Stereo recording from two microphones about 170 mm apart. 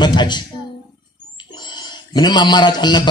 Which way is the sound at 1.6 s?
25° left (ahead or behind).